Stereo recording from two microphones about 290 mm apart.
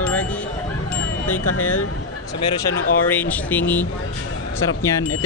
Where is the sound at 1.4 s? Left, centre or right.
Left.